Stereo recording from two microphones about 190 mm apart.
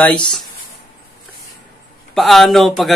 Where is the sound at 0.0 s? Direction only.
5° left (ahead or behind).